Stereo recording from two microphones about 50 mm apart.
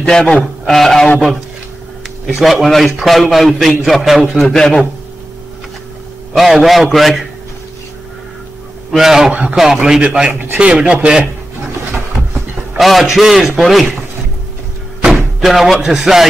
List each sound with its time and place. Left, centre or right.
0.0 s a man's voice: centre
2.2 s a man's voice: centre
6.3 s a man's voice: centre
8.9 s speech: centre
9.8 s speech: centre
12.7 s a man's voice: centre
15.0 s speech: centre